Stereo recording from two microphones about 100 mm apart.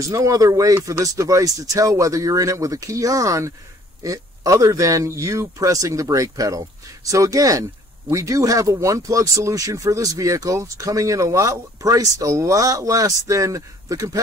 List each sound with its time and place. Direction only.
0.0 s speech: 35° right (ahead or behind)